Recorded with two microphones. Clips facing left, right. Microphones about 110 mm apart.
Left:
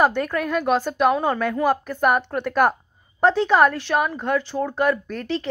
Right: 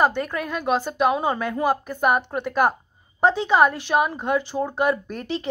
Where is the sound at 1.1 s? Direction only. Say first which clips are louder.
Left 2 dB; 10° right (ahead or behind).